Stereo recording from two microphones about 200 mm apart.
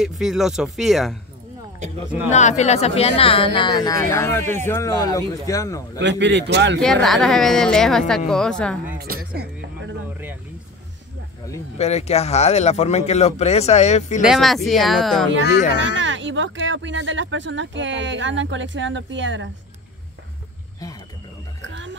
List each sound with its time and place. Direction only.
0.0 s a woman's voice: centre (ahead or behind)
2.3 s speech: 35° left (ahead or behind); by 5.9 s 15° left (ahead or behind)
5.9 s speech: 65° right (ahead or behind)
6.8 s a woman's voice: centre (ahead or behind)
8.9 s music: 50° right (ahead or behind)
11.4 s speech: 15° left (ahead or behind)
11.8 s speech: 30° left (ahead or behind)
14.2 s a woman's voice: centre (ahead or behind)
15.8 s speech: 70° right (ahead or behind)
21.5 s a sound: 70° right (ahead or behind)